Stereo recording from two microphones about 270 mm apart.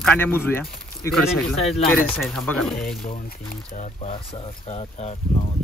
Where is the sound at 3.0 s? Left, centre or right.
Left.